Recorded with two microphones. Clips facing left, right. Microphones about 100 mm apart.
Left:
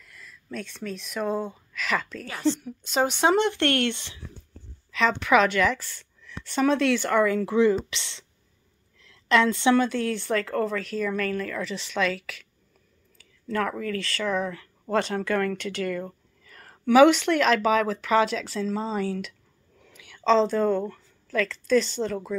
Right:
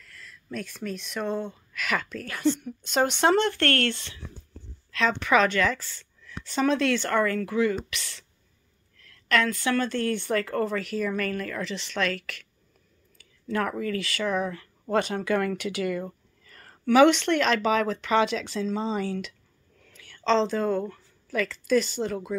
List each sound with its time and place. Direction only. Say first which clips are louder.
0.0 s speech: even; 5° left (ahead or behind)
4.9 s a woman's voice: left 2 dB; centre (ahead or behind)
7.4 s speech: left 4 dB; 25° left (ahead or behind)
8.9 s a sound: left 3 dB; 20° left (ahead or behind)
9.8 s speech: left 2 dB; 5° left (ahead or behind)
16.4 s speech: left 1 dB; centre (ahead or behind)
19.8 s speech: left 3 dB; 10° left (ahead or behind); by 22.3 s 5° right (ahead or behind)